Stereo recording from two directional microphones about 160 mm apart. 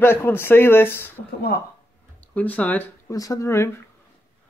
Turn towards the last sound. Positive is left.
turn(degrees=15)  # may be behind; listen again after turning